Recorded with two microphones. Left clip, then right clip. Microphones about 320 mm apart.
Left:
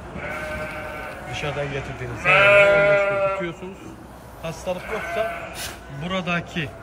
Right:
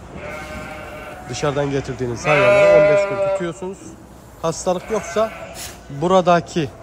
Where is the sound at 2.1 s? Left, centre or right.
Right.